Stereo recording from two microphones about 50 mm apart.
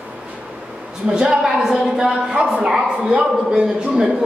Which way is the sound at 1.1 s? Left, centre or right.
Centre.